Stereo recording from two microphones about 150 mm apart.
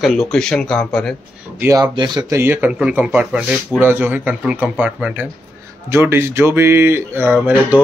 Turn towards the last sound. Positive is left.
turn(degrees=-10)  # may be behind; listen again after turning